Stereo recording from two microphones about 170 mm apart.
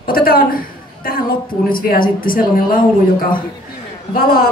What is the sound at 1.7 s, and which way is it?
A woman's voice, 60° left (ahead or behind).